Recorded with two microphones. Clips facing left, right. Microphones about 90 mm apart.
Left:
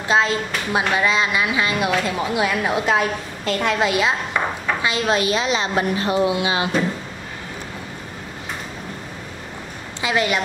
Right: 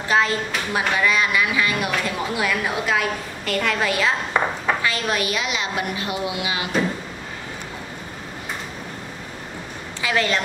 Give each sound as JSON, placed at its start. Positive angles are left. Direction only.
{"t": 0.1, "sound": "a woman's voice", "side_deg": 20}
{"t": 10.0, "sound": "speech", "side_deg": 20}